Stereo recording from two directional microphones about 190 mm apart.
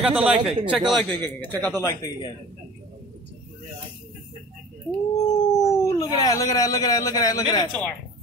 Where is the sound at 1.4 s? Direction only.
10° left (ahead or behind).